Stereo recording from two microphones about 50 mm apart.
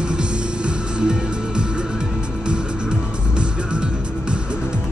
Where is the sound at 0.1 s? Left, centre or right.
Centre.